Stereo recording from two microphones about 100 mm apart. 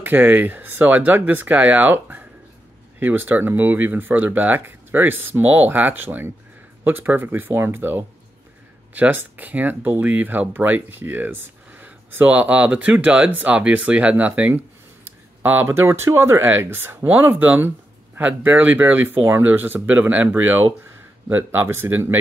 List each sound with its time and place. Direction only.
0.0 s speech: 15° right (ahead or behind)